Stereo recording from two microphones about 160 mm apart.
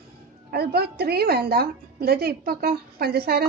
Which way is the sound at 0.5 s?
85° right.